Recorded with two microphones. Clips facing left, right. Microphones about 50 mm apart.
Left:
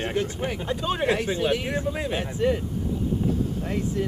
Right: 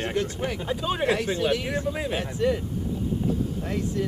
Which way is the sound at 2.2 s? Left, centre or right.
Left.